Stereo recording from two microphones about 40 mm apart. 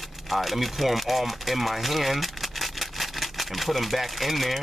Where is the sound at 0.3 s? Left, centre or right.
Centre.